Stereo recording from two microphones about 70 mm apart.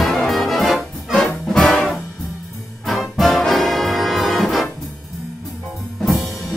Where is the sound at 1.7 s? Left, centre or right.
Centre.